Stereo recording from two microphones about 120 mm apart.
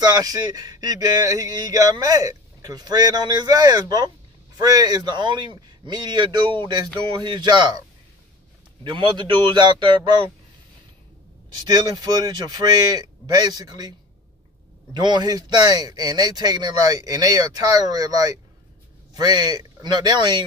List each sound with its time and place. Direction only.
0.0 s speech: 35° right (ahead or behind)
8.8 s speech: 40° right (ahead or behind)
11.6 s speech: 35° right (ahead or behind)
15.0 s speech: 35° right (ahead or behind)